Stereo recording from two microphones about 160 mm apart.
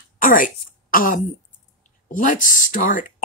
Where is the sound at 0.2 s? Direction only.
60° left (ahead or behind).